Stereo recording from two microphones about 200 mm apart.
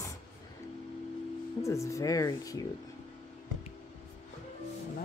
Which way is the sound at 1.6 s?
15° left (ahead or behind).